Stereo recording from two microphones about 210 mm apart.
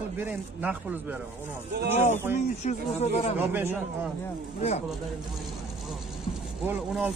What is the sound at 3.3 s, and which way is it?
Speech, 10° right (ahead or behind).